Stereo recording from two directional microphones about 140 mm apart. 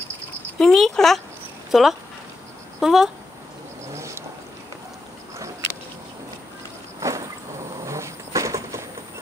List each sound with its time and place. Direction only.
0.6 s speech: 5° left (ahead or behind)
3.9 s vehicle: 20° right (ahead or behind)
7.0 s a sound: 20° right (ahead or behind)
7.8 s insect: 20° right (ahead or behind)